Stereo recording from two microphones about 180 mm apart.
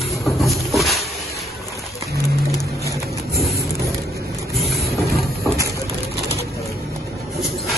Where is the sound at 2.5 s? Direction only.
20° left (ahead or behind).